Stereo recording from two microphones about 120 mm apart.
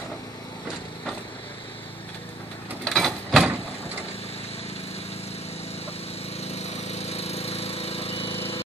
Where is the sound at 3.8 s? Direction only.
60° left (ahead or behind).